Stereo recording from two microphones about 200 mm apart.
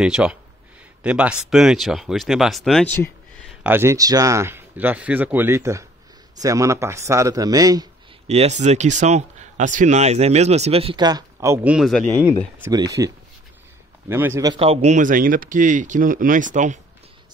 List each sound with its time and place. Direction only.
0.0 s speech: 5° right (ahead or behind)
3.4 s speech: 10° right (ahead or behind)
8.3 s speech: 35° right (ahead or behind); by 12.1 s centre (ahead or behind)
12.6 s speech: 15° right (ahead or behind); by 16.8 s 40° right (ahead or behind)